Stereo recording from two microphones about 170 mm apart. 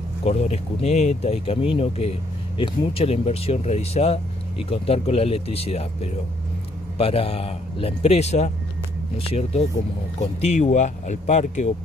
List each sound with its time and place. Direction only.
0.2 s speech: 40° left (ahead or behind)